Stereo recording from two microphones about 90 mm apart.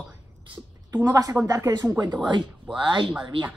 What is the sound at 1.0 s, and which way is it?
Speech, 40° right (ahead or behind).